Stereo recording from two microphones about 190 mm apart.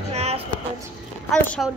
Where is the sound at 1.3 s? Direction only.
5° left (ahead or behind).